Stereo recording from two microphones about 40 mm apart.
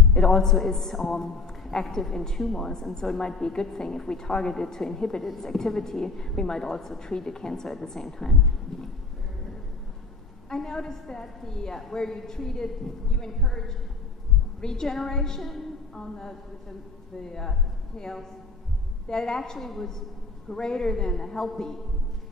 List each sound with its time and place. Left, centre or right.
0.1 s a man's voice: centre
10.5 s a man's voice: centre